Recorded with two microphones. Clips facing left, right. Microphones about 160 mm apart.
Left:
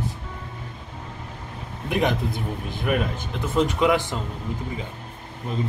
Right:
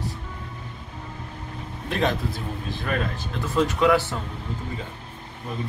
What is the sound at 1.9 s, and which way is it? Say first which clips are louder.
A man's voice: left 2 dB; 15° left (ahead or behind).